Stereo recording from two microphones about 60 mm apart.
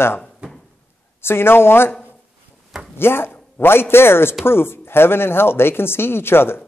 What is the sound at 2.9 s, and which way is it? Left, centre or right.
A man's voice, left.